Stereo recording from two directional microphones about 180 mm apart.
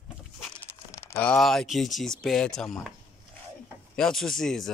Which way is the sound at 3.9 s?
5° left (ahead or behind).